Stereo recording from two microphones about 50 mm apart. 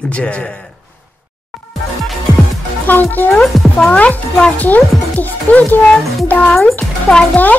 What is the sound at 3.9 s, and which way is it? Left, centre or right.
A man's voice, left.